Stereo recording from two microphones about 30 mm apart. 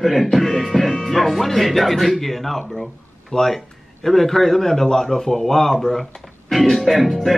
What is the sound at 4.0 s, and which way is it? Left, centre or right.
Speech, centre.